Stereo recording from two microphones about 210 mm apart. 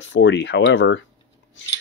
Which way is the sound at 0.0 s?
60° left (ahead or behind).